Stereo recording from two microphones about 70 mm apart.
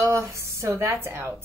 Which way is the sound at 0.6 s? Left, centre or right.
Right.